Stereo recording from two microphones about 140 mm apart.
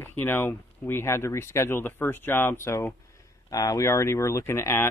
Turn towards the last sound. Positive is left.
turn(degrees=20)  # may be behind; listen again after turning